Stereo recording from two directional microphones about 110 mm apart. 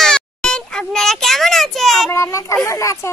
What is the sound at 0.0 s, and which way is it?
Child singing, 5° left (ahead or behind).